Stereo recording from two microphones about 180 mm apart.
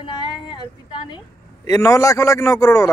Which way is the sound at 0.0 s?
25° left (ahead or behind).